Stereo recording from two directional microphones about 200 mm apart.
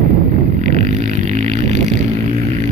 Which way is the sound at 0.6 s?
35° right (ahead or behind).